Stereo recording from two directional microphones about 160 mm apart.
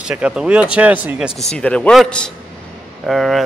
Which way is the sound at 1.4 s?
5° left (ahead or behind).